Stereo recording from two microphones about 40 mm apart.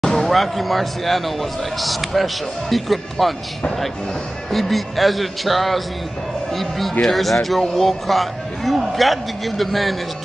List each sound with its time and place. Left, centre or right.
0.0 s a man's voice: centre
4.5 s a man's voice: centre